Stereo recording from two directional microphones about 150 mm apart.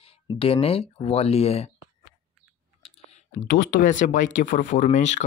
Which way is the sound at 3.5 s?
65° left (ahead or behind).